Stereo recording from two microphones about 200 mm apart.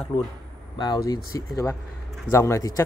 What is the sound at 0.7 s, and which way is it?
Speech, 20° left (ahead or behind).